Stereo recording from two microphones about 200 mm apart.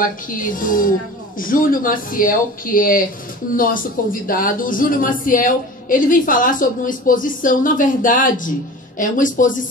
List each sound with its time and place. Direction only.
0.0 s speech: 45° left (ahead or behind)